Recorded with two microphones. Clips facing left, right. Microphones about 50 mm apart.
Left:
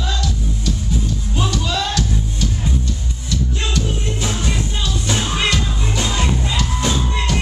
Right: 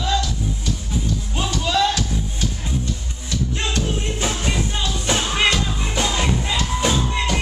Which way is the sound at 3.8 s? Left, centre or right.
Right.